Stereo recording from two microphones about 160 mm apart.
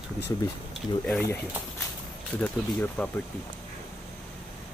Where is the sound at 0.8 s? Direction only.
5° left (ahead or behind).